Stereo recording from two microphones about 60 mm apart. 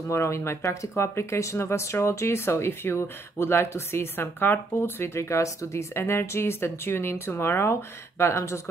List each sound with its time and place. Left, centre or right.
0.1 s speech: left
5.9 s speech: left